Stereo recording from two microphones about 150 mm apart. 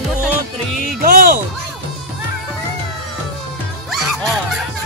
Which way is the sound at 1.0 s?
70° right (ahead or behind).